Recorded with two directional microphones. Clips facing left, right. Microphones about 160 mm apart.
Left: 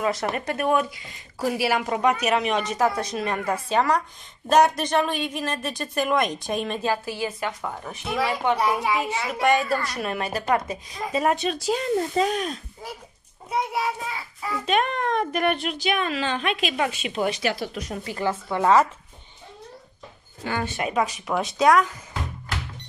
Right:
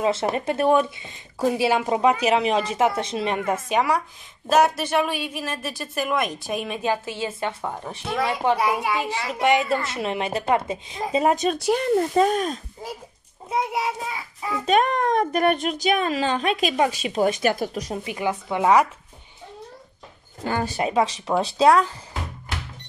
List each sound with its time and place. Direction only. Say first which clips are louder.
0.0 s a woman's voice: right 3 dB; 25° right (ahead or behind); by 6.8 s 5° right (ahead or behind)
6.8 s speech: right 1 dB; 20° right (ahead or behind)
8.1 s a woman's voice: right 1 dB; 5° left (ahead or behind)
9.3 s speech: right 1 dB; 20° right (ahead or behind)
11.5 s speech: right 3 dB; 60° right (ahead or behind); by 12.5 s 45° right (ahead or behind)
13.5 s speech: right 1 dB; 20° right (ahead or behind)
14.7 s a woman's voice: right 4 dB; 40° right (ahead or behind)
17.9 s speech: left 2 dB; 15° right (ahead or behind)
20.4 s a woman's voice: right 3 dB; 40° right (ahead or behind)